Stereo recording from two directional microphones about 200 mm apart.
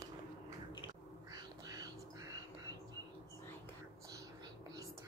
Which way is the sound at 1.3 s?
20° right (ahead or behind).